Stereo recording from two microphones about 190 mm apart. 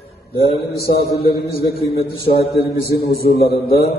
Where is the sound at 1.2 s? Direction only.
55° left (ahead or behind).